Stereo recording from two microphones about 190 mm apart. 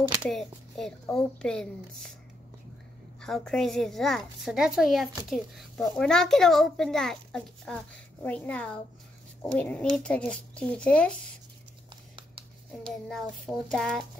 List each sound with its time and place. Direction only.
0.2 s speech: centre (ahead or behind)
3.2 s speech: centre (ahead or behind)
12.2 s a sound: 25° right (ahead or behind)
12.9 s speech: centre (ahead or behind)